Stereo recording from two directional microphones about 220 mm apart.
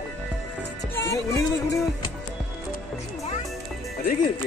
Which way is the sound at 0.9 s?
15° left (ahead or behind).